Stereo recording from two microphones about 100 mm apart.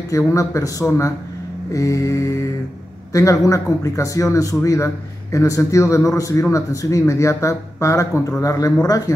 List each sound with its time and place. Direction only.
0.3 s a man's voice: 30° left (ahead or behind)